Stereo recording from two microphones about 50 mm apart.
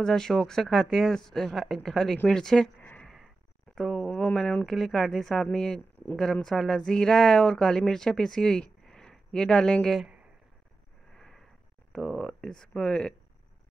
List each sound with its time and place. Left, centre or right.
0.0 s speech: centre
3.7 s speech: centre
11.1 s a sound: centre
11.9 s speech: centre